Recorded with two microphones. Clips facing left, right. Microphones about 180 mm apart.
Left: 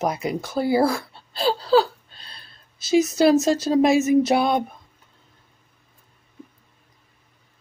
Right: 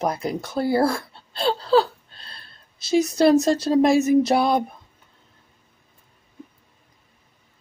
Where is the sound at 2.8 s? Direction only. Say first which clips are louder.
Left 1 dB; 30° right (ahead or behind).